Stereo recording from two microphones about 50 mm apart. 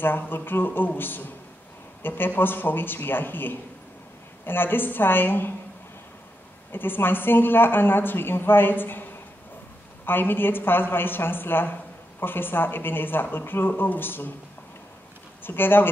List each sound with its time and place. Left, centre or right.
0.3 s a woman's voice: left
6.7 s a woman's voice: left
10.0 s a woman's voice: left
15.4 s a woman's voice: left